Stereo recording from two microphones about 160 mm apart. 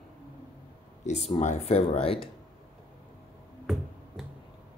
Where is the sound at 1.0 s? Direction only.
45° left (ahead or behind).